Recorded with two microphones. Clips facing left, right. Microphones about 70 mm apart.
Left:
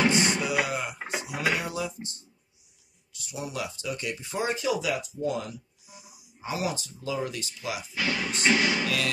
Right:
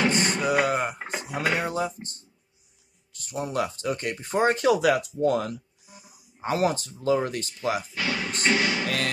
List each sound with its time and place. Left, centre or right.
0.2 s music: right
1.0 s speech: right
7.9 s music: centre
8.8 s music: right